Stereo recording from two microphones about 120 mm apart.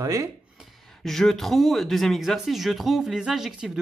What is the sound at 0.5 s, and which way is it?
Speech, centre (ahead or behind).